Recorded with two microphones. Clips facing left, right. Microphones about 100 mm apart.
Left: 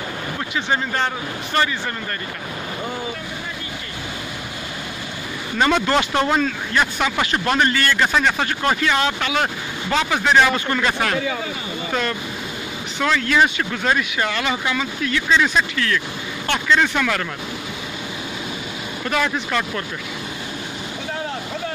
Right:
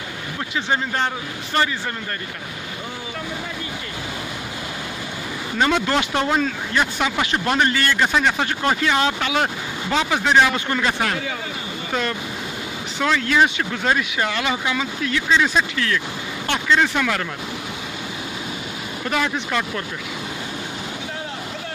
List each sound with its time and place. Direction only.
5.6 s speech: 5° right (ahead or behind)
13.0 s speech: 15° right (ahead or behind)
16.8 s speech: 10° right (ahead or behind)
19.0 s speech: 10° right (ahead or behind)